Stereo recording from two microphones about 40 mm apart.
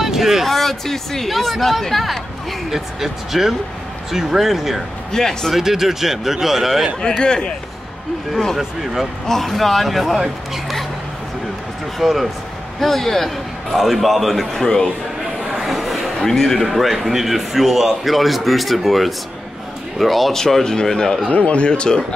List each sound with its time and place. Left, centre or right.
0.0 s a man's voice: centre
5.1 s speech: centre
5.5 s speech: centre
7.0 s speech: left
9.3 s a man's voice: centre
10.1 s speech: centre
12.0 s a man's voice: centre
15.5 s a sound: centre
16.6 s a man's voice: centre
21.3 s speech: left